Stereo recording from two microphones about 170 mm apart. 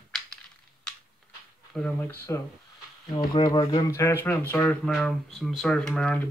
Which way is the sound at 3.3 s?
25° left (ahead or behind).